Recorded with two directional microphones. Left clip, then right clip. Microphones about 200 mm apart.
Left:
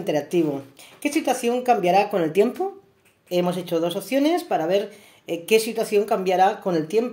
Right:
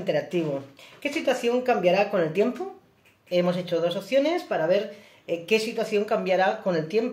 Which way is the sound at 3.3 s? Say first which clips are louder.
Left 1 dB; 60° left (ahead or behind).